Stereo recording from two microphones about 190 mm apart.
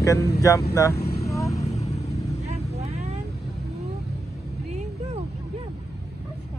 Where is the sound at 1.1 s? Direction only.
35° left (ahead or behind).